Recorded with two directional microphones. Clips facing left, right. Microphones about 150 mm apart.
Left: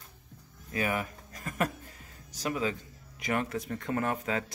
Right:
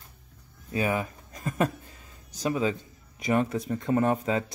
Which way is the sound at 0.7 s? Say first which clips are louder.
Right 4 dB; 25° right (ahead or behind).